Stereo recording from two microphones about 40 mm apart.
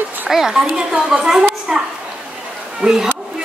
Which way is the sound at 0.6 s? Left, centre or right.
Right.